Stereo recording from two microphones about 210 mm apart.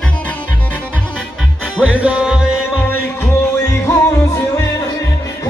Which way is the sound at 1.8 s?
5° right (ahead or behind).